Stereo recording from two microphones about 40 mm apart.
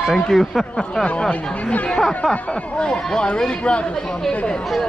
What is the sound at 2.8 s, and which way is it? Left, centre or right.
Speech, left.